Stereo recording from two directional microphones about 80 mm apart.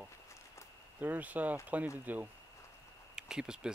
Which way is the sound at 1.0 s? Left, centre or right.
Right.